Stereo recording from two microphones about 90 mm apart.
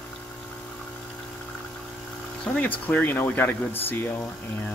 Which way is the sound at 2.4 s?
15° left (ahead or behind).